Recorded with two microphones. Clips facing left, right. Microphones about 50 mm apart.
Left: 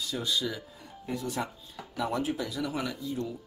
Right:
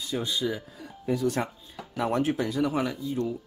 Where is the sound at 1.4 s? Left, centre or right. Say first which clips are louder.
Right 4 dB; right.